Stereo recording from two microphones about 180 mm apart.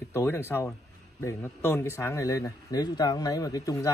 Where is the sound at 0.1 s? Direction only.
15° left (ahead or behind).